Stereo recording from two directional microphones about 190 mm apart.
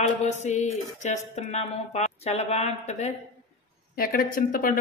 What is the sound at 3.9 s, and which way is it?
Speech, 50° left (ahead or behind).